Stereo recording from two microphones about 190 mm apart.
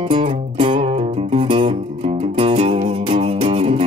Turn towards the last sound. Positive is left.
turn(degrees=-30)  # may be behind; listen again after turning